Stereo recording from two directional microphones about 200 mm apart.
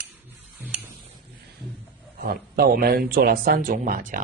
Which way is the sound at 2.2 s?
50° right (ahead or behind).